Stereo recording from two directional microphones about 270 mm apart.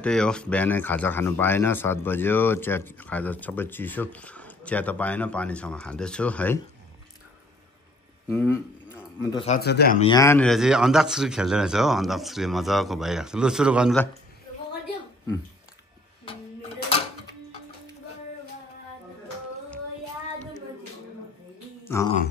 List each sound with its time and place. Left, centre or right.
0.0 s speech: centre
8.3 s speech: centre
8.9 s a sound: centre
9.6 s speech: left
9.9 s speech: centre
21.8 s speech: centre